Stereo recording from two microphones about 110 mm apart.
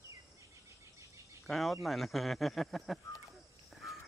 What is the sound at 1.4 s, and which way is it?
Speech, centre (ahead or behind).